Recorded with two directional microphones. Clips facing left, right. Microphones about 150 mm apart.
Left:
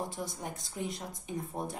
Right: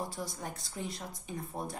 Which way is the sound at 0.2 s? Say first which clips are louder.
Left 1 dB; 15° left (ahead or behind).